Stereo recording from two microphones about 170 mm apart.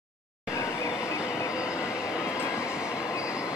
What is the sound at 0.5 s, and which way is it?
Train, 15° left (ahead or behind).